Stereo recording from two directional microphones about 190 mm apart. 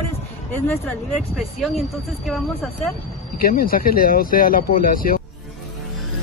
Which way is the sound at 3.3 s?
50° left (ahead or behind).